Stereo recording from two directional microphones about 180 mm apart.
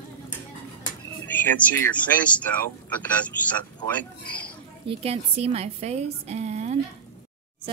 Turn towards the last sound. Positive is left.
turn(degrees=-40)  # may be behind; listen again after turning